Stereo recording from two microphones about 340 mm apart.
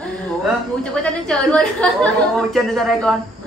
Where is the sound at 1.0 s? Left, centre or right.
Centre.